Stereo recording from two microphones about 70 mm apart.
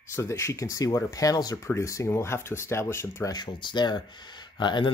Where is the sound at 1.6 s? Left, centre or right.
Left.